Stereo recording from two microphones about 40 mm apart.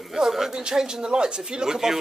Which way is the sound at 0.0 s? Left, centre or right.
Centre.